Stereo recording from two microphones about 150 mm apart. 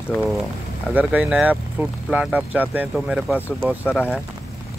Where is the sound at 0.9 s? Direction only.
10° right (ahead or behind).